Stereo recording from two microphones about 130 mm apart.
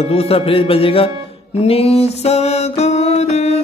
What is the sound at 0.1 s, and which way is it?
Music, 45° left (ahead or behind).